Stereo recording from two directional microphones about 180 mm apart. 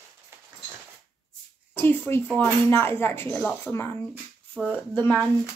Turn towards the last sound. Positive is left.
turn(degrees=10)  # may be behind; listen again after turning